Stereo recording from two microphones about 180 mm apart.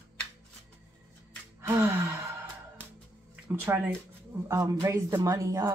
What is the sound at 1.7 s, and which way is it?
Gasp, 15° right (ahead or behind).